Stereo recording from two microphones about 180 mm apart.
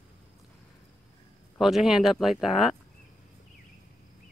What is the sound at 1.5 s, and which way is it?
Speech, centre (ahead or behind).